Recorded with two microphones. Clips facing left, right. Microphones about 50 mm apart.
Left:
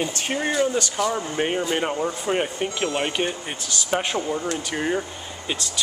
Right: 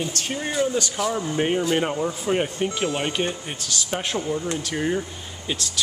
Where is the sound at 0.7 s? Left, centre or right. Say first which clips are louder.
Left 1 dB; centre.